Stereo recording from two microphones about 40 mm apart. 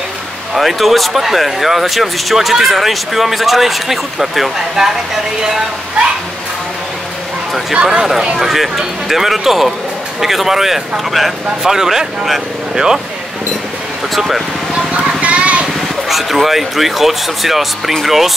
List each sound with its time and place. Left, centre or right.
0.6 s speech: centre
7.7 s speech: centre
8.4 s speech: centre
14.1 s speech: centre
15.2 s vehicle: right
16.1 s speech: centre